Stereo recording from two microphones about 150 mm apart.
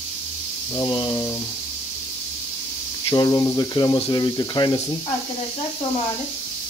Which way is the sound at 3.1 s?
25° left (ahead or behind).